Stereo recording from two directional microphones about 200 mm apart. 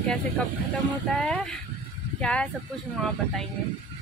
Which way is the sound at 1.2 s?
5° left (ahead or behind).